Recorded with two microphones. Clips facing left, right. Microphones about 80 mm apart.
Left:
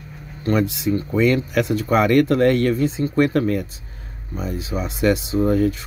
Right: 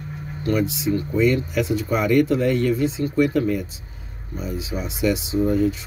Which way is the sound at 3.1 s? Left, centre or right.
Left.